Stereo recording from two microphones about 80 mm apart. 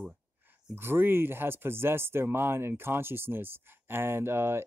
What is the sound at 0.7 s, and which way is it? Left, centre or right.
Speech, right.